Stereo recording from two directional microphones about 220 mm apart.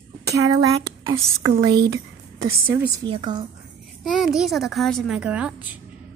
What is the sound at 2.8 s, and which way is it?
Speech, 20° right (ahead or behind).